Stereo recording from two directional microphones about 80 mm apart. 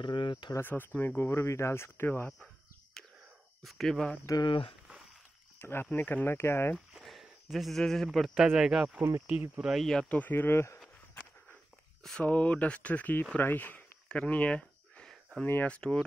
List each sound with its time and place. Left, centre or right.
0.0 s speech: left
0.6 s speech: left
2.4 s a sound: centre
3.6 s speech: centre
4.5 s speech: left
5.6 s speech: left
7.0 s speech: centre
9.3 s speech: centre
9.7 s speech: centre
10.0 s speech: left
12.2 s speech: centre
14.0 s a sound: centre
15.6 s speech: centre